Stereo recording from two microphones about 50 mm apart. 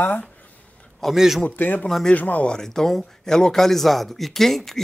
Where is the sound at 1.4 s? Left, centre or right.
Left.